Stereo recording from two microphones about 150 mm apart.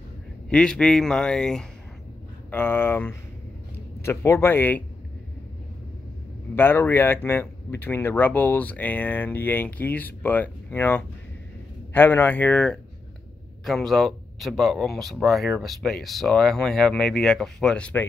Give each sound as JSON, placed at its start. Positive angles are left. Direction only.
{"t": 0.5, "sound": "speech", "side_deg": 5}
{"t": 6.5, "sound": "speech", "side_deg": 15}